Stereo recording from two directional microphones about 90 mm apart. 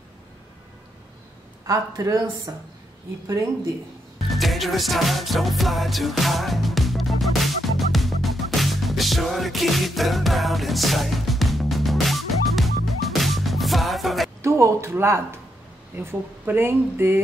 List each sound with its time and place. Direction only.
1.7 s speech: 40° right (ahead or behind)
4.3 s music: centre (ahead or behind)
14.4 s speech: 35° right (ahead or behind)